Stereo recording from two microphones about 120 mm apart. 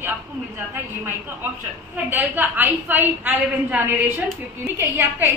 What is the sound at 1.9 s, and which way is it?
A woman's voice, 15° right (ahead or behind).